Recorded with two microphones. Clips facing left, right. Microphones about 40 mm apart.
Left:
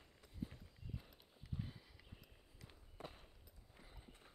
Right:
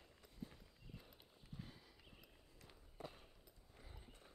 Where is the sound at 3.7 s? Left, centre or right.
Centre.